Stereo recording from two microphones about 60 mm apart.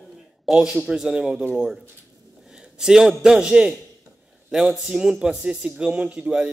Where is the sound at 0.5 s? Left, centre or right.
Centre.